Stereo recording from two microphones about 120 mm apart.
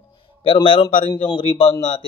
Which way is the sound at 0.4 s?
45° left (ahead or behind).